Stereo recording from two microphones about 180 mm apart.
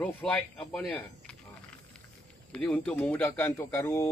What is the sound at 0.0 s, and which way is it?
Speech, 10° left (ahead or behind).